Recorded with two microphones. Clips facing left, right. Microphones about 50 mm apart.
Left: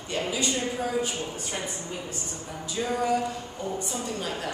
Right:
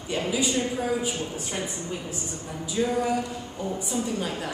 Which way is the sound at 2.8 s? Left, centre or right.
Centre.